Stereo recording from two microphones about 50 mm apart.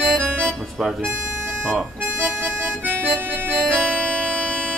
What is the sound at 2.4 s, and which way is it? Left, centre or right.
Music, right.